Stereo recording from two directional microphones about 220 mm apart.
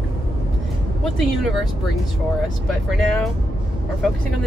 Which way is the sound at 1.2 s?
Centre (ahead or behind).